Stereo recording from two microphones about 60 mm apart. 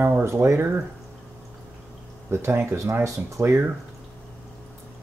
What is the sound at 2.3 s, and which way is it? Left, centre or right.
Speech, right.